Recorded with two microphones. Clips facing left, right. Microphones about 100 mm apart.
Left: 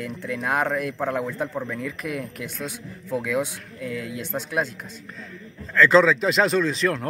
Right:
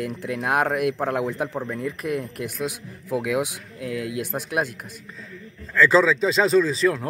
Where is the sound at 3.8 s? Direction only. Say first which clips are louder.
Right 2 dB; 60° right (ahead or behind).